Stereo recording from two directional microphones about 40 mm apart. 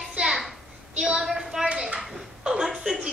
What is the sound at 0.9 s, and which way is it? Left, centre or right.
Speech, right.